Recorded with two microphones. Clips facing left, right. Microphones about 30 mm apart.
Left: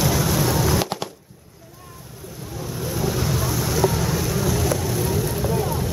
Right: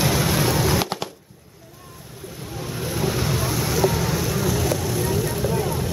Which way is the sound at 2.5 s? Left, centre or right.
Right.